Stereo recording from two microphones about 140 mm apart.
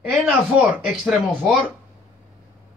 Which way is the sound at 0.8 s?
5° right (ahead or behind).